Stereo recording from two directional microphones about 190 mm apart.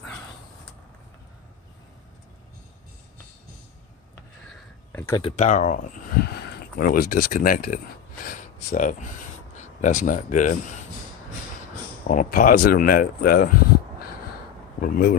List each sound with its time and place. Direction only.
5.3 s speech: 40° left (ahead or behind)
12.1 s speech: 45° left (ahead or behind)
14.8 s a sound: 50° left (ahead or behind)